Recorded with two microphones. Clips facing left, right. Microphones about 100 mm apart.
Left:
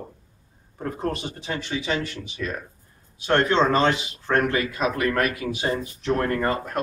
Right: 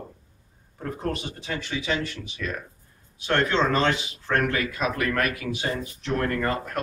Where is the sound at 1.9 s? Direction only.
Centre (ahead or behind).